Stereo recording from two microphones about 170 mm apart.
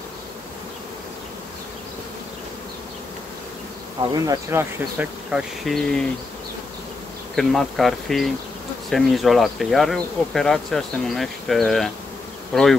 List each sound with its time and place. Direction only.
4.1 s speech: 20° right (ahead or behind)
5.3 s speech: centre (ahead or behind)
7.3 s speech: centre (ahead or behind)